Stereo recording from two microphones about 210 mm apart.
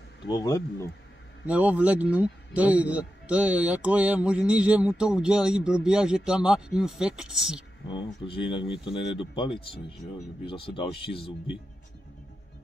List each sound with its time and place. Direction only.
0.3 s speech: 15° left (ahead or behind)
1.4 s a man's voice: 5° right (ahead or behind)
7.9 s speech: 25° left (ahead or behind)